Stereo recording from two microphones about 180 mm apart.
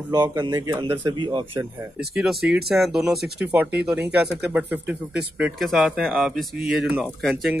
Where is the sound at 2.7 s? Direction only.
Centre (ahead or behind).